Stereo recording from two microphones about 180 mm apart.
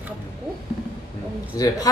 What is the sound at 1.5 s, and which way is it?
Speech, 20° left (ahead or behind).